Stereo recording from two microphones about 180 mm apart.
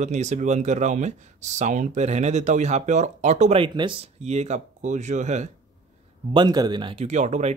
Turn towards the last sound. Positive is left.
turn(degrees=-40)  # may be behind; listen again after turning